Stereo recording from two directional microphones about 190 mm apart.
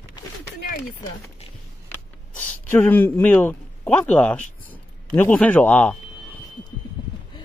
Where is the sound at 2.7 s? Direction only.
10° left (ahead or behind).